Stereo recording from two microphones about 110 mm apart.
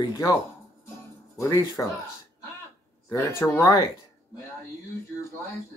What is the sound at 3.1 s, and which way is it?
Speech, 25° left (ahead or behind).